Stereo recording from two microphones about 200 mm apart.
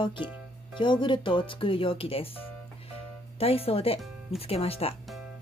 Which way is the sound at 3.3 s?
30° left (ahead or behind).